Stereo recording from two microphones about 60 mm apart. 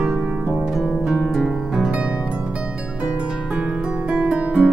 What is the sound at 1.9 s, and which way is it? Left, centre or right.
Harp, right.